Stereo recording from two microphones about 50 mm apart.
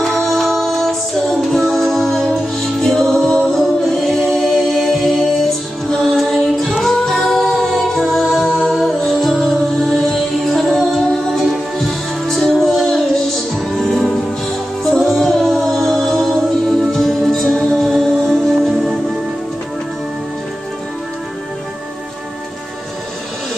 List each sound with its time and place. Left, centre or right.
0.0 s music: centre